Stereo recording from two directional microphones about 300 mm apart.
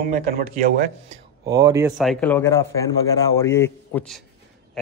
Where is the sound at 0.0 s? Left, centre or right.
Right.